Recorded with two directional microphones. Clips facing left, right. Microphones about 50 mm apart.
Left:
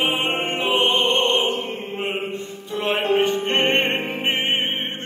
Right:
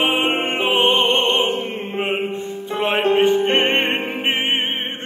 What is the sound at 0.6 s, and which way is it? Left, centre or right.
Opera, right.